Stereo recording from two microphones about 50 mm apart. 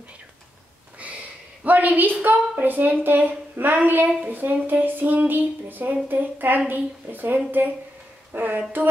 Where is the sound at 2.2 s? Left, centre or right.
Right.